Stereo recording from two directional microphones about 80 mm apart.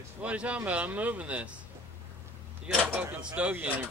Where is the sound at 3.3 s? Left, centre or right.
Centre.